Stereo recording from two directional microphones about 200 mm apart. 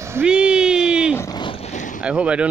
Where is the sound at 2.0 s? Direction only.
5° right (ahead or behind).